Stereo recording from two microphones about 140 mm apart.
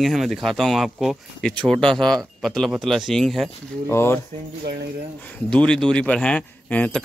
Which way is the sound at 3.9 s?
15° left (ahead or behind).